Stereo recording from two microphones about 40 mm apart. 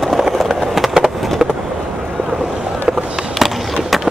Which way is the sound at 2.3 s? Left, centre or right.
Centre.